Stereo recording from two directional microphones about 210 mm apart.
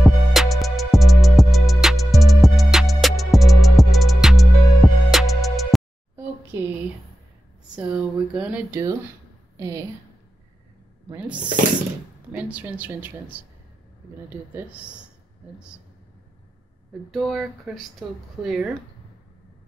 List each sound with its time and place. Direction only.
0.0 s music: centre (ahead or behind)
7.7 s a woman's voice: 5° right (ahead or behind)
11.1 s speech: 5° right (ahead or behind)
17.1 s speech: centre (ahead or behind)